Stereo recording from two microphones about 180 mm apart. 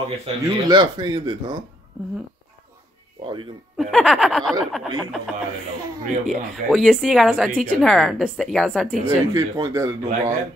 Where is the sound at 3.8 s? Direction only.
Centre (ahead or behind).